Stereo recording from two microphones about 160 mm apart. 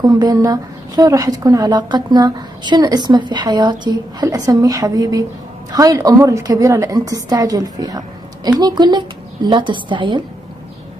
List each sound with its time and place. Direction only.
0.0 s speech: 25° right (ahead or behind)